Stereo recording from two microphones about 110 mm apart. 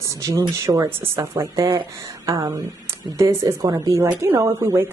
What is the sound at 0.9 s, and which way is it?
A woman's voice, 20° right (ahead or behind).